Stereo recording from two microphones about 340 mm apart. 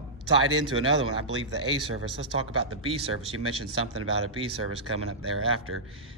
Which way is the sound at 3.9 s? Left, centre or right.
Right.